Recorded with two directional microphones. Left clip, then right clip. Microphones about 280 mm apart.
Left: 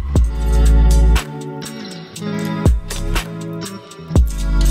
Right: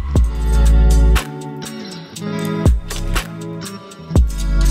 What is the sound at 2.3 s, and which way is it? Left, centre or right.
Music, left.